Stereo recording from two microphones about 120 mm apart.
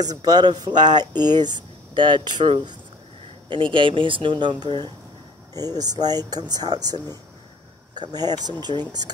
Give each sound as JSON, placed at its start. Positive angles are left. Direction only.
{"t": 0.0, "sound": "speech", "side_deg": -30}